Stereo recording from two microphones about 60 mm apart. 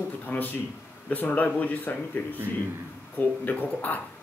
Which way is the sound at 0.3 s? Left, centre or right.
Left.